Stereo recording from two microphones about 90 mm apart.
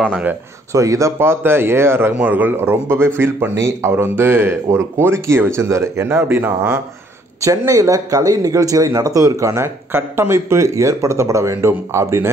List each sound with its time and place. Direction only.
0.1 s speech: 15° right (ahead or behind)
0.7 s speech: 35° right (ahead or behind)
7.4 s speech: 35° right (ahead or behind)